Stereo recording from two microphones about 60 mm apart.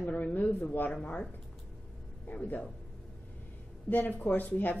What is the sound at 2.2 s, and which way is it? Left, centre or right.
Speech, left.